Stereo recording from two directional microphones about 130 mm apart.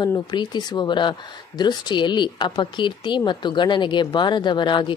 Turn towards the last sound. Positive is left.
turn(degrees=35)  # may be behind; listen again after turning